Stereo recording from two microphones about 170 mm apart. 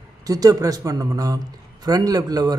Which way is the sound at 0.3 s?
20° right (ahead or behind).